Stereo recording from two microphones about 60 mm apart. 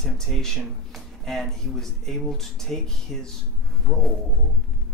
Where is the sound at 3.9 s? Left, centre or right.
Centre.